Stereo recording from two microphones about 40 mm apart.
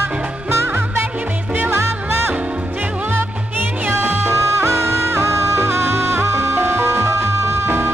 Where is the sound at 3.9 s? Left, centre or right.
Right.